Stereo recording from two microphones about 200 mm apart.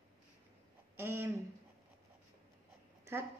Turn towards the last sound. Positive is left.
turn(degrees=-10)  # may be behind; listen again after turning